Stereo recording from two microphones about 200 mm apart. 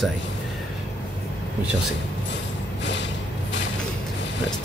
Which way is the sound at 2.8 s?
65° left (ahead or behind).